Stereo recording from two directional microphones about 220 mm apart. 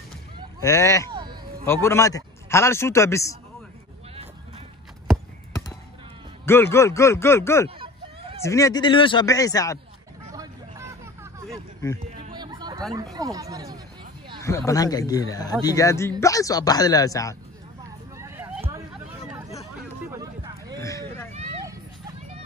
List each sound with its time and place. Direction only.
0.6 s a man's voice: 15° left (ahead or behind)
1.1 s a sound: 20° right (ahead or behind)
1.7 s a man's voice: 10° left (ahead or behind)
6.4 s a man's voice: 10° left (ahead or behind)
7.8 s hubbub: 25° right (ahead or behind)
8.4 s a man's voice: 15° left (ahead or behind)
10.3 s vehicle: 15° right (ahead or behind)
12.1 s chatter: 25° right (ahead or behind)
13.1 s speech: 15° right (ahead or behind)
14.7 s a man's voice: 15° left (ahead or behind)
18.1 s a sound: 10° right (ahead or behind)
20.1 s a sound: 15° right (ahead or behind)
20.8 s a sound: 15° left (ahead or behind)